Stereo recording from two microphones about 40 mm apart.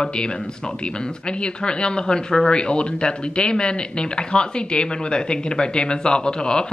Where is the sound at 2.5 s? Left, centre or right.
Left.